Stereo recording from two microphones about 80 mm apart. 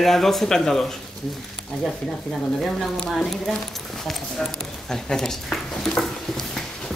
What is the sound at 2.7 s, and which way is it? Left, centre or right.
Speech, centre.